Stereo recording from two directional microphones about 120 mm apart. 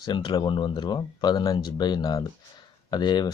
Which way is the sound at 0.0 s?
40° left (ahead or behind).